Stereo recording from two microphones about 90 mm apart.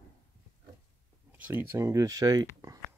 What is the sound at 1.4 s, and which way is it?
Speech, 25° right (ahead or behind).